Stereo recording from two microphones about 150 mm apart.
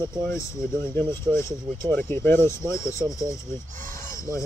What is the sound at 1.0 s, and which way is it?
Speech, 15° left (ahead or behind).